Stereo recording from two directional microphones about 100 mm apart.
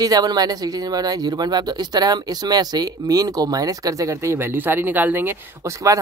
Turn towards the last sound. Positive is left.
turn(degrees=-30)  # may be behind; listen again after turning